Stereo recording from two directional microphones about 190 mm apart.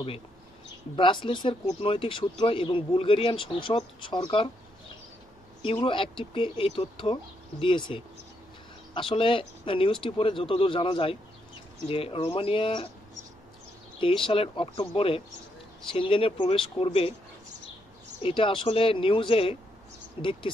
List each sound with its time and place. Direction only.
0.9 s speech: 25° left (ahead or behind)
5.9 s speech: 25° left (ahead or behind)
9.1 s speech: 30° left (ahead or behind)
13.9 s speech: 25° left (ahead or behind)
18.2 s speech: 25° left (ahead or behind)